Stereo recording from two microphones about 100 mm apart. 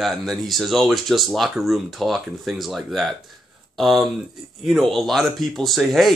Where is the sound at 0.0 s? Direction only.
Centre (ahead or behind).